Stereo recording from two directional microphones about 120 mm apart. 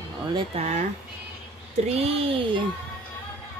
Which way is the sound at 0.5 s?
65° right (ahead or behind).